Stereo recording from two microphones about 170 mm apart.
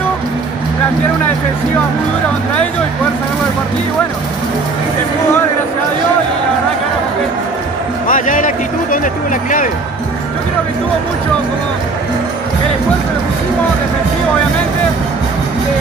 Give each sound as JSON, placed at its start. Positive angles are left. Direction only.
{"t": 8.1, "sound": "speech", "side_deg": 50}